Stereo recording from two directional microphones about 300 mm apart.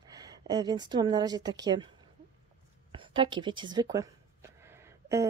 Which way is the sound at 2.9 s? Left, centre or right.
Centre.